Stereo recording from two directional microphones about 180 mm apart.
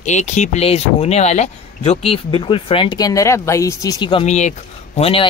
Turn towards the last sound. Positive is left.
turn(degrees=30)  # may be behind; listen again after turning